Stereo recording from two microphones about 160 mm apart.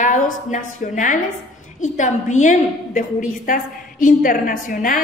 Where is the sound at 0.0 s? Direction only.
50° left (ahead or behind).